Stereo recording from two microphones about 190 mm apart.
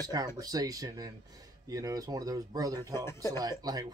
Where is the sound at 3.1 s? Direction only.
15° left (ahead or behind).